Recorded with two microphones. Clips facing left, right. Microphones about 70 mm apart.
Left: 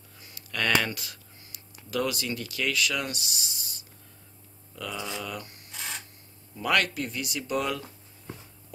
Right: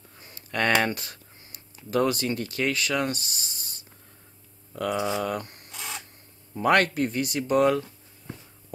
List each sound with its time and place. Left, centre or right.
0.2 s speech: right